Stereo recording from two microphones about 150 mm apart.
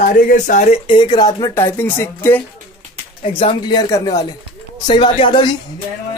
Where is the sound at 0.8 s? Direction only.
35° left (ahead or behind).